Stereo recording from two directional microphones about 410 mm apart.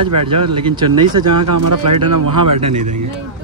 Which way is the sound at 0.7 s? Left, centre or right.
Centre.